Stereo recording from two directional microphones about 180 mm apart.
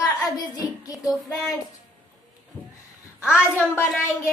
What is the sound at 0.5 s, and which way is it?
Speech, 20° left (ahead or behind).